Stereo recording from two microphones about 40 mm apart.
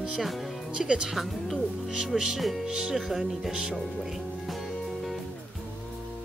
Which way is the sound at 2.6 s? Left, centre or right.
Centre.